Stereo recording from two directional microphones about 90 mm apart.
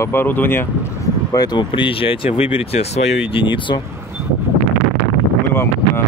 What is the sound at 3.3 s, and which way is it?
Speech, 65° left (ahead or behind).